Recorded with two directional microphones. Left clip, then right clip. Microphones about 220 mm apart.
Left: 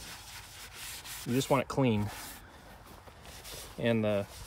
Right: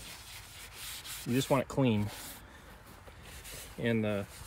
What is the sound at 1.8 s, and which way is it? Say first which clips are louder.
Speech: left 1 dB; centre (ahead or behind).